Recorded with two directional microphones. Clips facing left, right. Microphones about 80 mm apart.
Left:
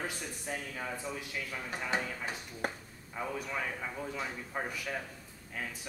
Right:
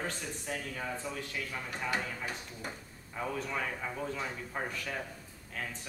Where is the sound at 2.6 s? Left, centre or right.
Left.